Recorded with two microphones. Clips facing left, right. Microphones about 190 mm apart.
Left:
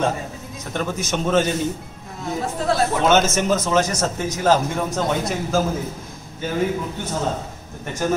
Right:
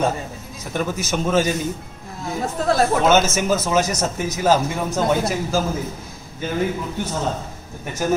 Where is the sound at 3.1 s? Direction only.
5° right (ahead or behind).